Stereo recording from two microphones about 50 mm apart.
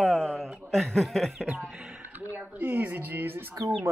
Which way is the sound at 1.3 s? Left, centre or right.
Right.